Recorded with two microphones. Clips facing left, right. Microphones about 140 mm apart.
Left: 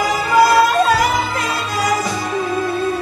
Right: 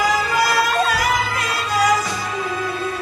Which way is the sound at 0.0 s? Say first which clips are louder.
Left 5 dB; 25° left (ahead or behind).